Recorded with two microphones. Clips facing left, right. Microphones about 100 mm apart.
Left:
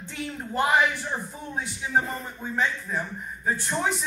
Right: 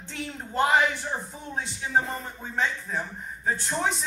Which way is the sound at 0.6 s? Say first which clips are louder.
Even; 25° right (ahead or behind).